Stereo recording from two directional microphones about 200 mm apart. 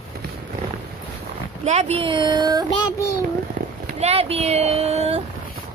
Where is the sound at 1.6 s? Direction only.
30° right (ahead or behind).